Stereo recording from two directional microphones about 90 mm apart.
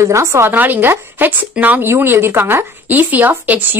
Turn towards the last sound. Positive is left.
turn(degrees=-20)  # may be behind; listen again after turning